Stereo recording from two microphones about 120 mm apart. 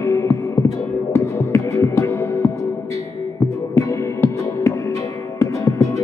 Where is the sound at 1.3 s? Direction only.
25° left (ahead or behind).